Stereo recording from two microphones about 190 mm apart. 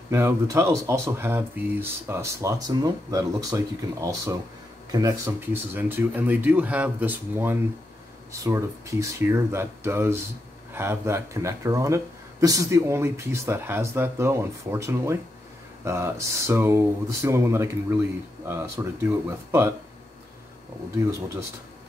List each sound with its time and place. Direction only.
0.1 s speech: 15° right (ahead or behind)